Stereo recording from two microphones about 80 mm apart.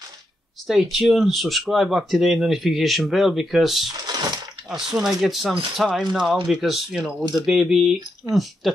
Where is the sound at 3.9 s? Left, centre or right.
Right.